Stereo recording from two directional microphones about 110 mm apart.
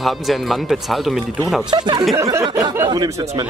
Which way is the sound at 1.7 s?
45° right (ahead or behind).